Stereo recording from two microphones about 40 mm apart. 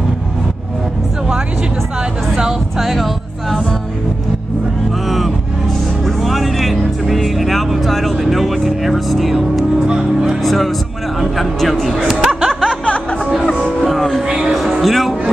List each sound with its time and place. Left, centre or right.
2.8 s speech: centre
6.0 s music: centre
9.8 s music: centre
10.4 s music: centre
11.1 s a sound: centre
13.5 s music: left
13.7 s music: centre